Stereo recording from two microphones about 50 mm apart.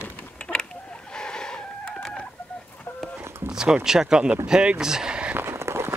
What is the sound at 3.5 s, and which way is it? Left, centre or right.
Speech, centre.